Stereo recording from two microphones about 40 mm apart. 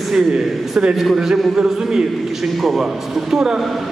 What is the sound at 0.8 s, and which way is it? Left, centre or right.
A man's voice, right.